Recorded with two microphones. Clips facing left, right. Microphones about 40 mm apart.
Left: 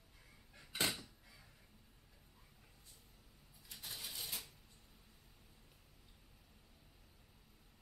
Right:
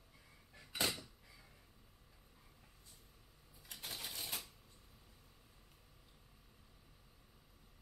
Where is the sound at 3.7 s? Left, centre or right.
Right.